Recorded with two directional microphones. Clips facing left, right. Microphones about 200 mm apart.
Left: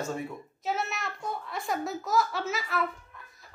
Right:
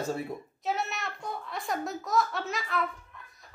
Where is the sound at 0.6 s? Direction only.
Centre (ahead or behind).